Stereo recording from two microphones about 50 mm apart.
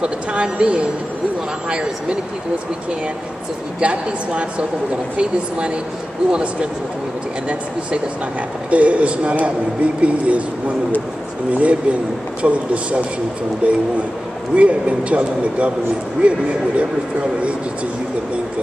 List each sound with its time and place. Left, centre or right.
0.0 s speech: right
3.8 s speech: right
8.6 s speech: right
11.5 s speech: right